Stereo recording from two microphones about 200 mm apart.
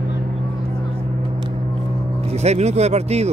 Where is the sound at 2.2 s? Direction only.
35° right (ahead or behind).